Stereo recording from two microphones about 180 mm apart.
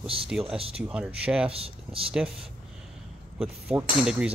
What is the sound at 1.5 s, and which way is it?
Speech, 30° right (ahead or behind).